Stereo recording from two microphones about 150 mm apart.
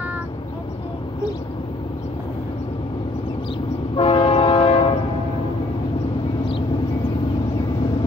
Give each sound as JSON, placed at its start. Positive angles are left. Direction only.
{"t": 3.9, "sound": "train", "side_deg": 35}